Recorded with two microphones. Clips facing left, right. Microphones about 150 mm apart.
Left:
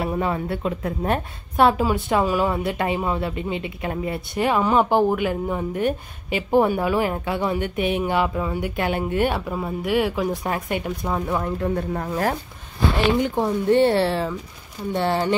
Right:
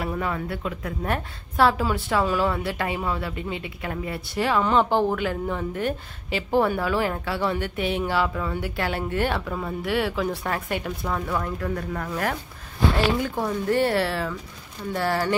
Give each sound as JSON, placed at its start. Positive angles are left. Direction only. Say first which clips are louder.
{"t": 0.0, "sound": "a woman's voice", "louder": "left 4 dB", "side_deg": 25}